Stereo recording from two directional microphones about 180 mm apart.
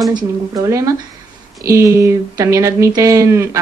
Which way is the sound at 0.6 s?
15° right (ahead or behind).